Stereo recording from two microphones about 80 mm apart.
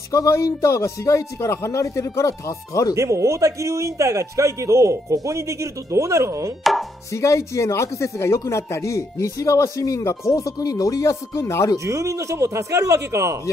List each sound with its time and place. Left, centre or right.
0.1 s speech: left
3.0 s a man's voice: right
6.6 s chopping: centre
7.1 s speech: left
11.8 s a man's voice: right